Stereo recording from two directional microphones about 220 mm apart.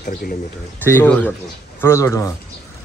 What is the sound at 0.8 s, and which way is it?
Speech, 10° left (ahead or behind).